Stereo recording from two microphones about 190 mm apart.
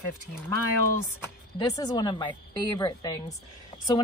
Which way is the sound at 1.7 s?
20° left (ahead or behind).